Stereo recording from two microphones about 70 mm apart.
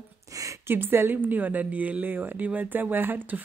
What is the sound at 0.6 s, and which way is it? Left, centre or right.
A woman's voice, right.